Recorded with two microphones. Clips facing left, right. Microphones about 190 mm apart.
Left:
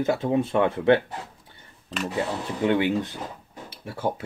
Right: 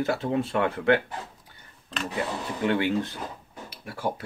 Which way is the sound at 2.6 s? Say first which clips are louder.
Left 2 dB; 20° left (ahead or behind).